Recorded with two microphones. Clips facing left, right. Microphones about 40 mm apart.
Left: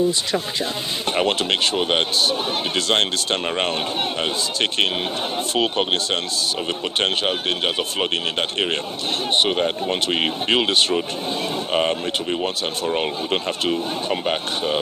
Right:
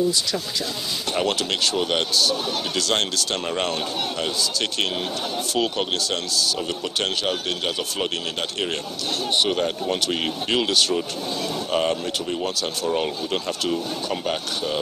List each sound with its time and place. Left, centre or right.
1.1 s speech: left
9.3 s speech: left